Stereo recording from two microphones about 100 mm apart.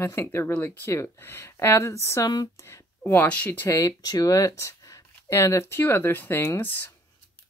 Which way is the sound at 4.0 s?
35° left (ahead or behind).